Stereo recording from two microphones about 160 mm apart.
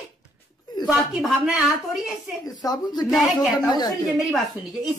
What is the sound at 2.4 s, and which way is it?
Speech, 25° left (ahead or behind).